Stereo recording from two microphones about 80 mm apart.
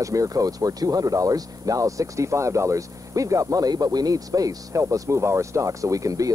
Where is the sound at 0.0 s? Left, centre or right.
Right.